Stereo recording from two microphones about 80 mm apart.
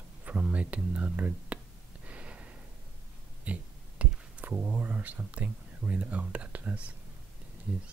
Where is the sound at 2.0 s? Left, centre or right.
Centre.